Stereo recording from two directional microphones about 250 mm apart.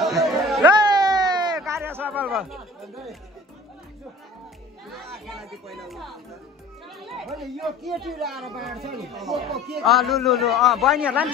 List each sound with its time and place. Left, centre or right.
0.0 s chatter: centre
0.7 s a sound: centre
4.9 s speech: centre